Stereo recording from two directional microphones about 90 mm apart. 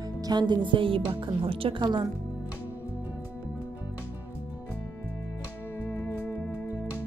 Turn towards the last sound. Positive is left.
turn(degrees=25)  # may be behind; listen again after turning